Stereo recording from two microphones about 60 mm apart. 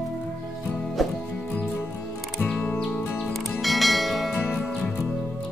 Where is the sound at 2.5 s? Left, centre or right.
Centre.